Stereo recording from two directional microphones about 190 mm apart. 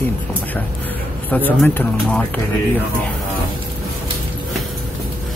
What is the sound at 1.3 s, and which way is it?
Speech, 10° left (ahead or behind).